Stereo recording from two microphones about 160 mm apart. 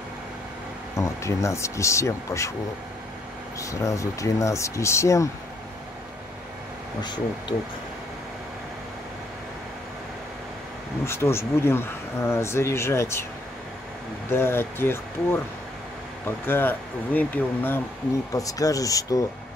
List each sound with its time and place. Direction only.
0.9 s speech: 20° left (ahead or behind)
3.5 s speech: 20° left (ahead or behind)
7.0 s speech: 25° left (ahead or behind)
11.1 s speech: 15° left (ahead or behind)
14.3 s speech: 15° left (ahead or behind)